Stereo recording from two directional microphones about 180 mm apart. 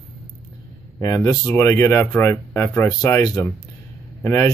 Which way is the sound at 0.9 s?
20° left (ahead or behind).